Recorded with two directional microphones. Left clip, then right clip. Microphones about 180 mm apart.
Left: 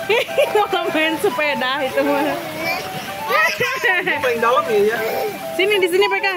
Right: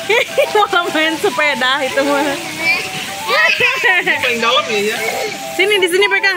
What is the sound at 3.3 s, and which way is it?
Speech, 10° right (ahead or behind).